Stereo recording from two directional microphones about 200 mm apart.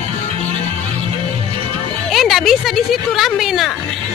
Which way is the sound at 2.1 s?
Centre (ahead or behind).